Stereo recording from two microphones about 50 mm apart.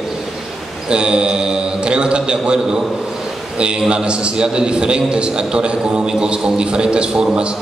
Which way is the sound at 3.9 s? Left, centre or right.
Centre.